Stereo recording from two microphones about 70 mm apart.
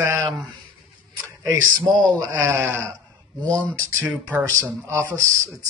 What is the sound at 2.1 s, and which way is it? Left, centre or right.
Speech, right.